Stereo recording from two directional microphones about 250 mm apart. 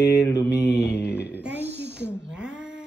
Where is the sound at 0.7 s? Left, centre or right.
Left.